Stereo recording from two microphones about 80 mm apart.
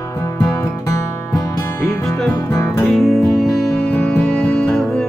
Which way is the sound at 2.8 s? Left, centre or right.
Centre.